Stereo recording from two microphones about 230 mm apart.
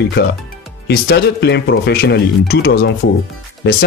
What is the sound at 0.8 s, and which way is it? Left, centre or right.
Speech, left.